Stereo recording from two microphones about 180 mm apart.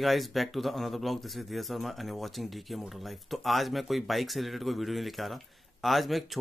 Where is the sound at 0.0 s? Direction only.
Centre (ahead or behind).